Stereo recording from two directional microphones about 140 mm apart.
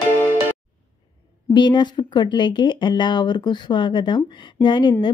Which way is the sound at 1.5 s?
35° left (ahead or behind).